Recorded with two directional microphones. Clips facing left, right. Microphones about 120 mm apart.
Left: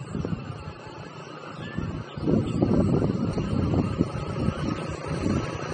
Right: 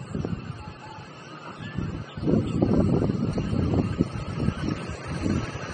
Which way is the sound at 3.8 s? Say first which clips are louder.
Even; 40° left (ahead or behind).